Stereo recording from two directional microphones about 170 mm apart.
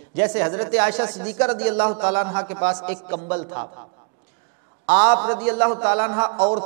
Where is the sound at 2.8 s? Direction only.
15° right (ahead or behind).